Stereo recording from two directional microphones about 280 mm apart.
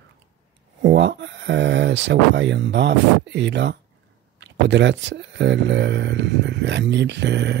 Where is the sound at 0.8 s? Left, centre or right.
Right.